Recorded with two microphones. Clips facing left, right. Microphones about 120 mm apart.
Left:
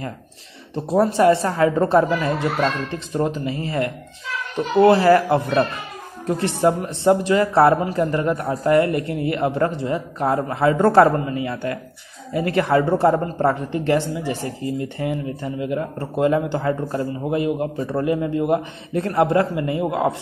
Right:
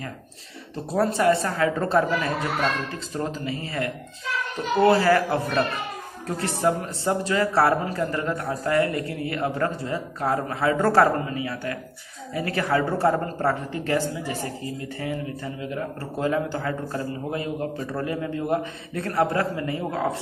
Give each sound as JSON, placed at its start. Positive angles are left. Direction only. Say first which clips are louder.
{"t": 0.9, "sound": "speech", "louder": "left 5 dB", "side_deg": 20}
{"t": 4.7, "sound": "speech", "louder": "left 5 dB", "side_deg": 25}